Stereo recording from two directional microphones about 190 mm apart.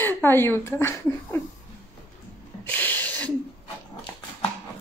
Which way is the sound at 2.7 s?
10° left (ahead or behind).